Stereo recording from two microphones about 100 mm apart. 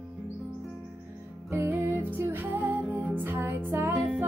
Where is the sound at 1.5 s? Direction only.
25° right (ahead or behind).